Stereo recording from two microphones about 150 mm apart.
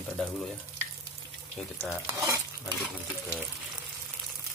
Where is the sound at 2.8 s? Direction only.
5° right (ahead or behind).